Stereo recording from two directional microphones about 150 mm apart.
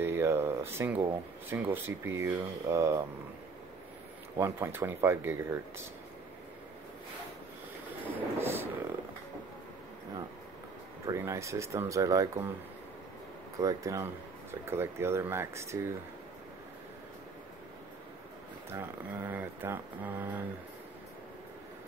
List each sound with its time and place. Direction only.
0.0 s a sound: 15° right (ahead or behind)
1.5 s speech: 15° right (ahead or behind)
4.4 s speech: 15° right (ahead or behind)
8.1 s vehicle: 15° right (ahead or behind)
11.1 s speech: 20° right (ahead or behind)
13.6 s speech: 20° right (ahead or behind)
18.7 s speech: 15° right (ahead or behind)